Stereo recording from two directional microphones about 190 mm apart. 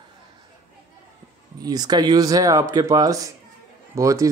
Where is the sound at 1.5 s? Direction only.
20° right (ahead or behind).